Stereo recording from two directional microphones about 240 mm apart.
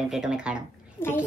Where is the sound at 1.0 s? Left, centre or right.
Centre.